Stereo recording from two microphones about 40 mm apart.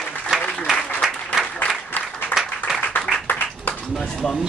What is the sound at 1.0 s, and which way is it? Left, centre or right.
Applause, centre.